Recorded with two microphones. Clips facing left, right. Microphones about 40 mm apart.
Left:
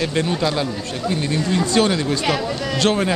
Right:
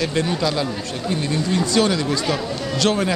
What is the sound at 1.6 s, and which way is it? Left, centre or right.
Speech, left.